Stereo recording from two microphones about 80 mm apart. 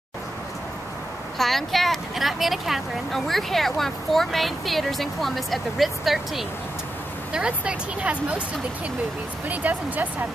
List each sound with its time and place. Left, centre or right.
1.4 s speech: centre
7.3 s speech: centre
9.5 s speech: centre